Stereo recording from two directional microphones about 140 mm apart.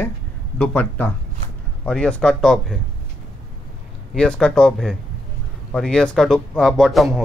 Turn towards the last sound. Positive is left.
turn(degrees=0)  # may be behind; listen again after turning